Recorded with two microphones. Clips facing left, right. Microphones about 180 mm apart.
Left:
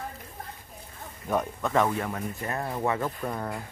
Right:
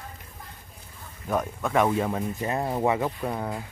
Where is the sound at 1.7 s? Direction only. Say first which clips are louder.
Right 3 dB; 15° right (ahead or behind).